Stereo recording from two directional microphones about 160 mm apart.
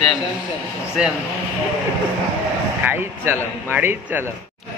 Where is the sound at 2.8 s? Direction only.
15° right (ahead or behind).